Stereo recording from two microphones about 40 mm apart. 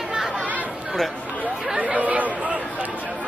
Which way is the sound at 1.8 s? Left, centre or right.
Right.